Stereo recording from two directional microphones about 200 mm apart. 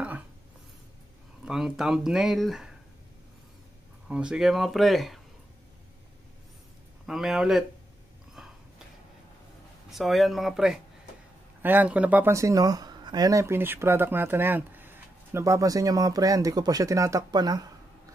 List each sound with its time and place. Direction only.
1.4 s speech: centre (ahead or behind)
4.1 s speech: 5° right (ahead or behind)
7.1 s speech: centre (ahead or behind)
8.4 s a sound: 5° right (ahead or behind)
9.8 s speech: centre (ahead or behind); by 17.6 s 20° right (ahead or behind)